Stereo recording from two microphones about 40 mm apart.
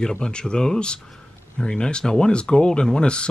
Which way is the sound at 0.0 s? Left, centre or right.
Left.